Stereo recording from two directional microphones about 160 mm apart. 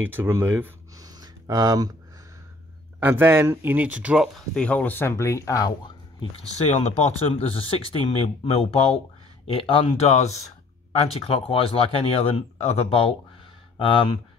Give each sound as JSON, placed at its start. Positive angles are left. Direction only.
{"t": 0.0, "sound": "speech", "side_deg": -15}
{"t": 1.0, "sound": "a sound", "side_deg": -25}
{"t": 3.0, "sound": "speech", "side_deg": -10}
{"t": 4.6, "sound": "speech", "side_deg": 10}